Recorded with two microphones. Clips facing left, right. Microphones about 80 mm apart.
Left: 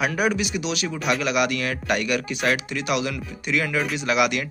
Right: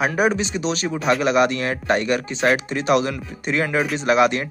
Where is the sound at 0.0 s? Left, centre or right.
Right.